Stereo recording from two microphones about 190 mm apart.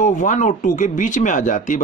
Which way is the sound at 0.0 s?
40° left (ahead or behind).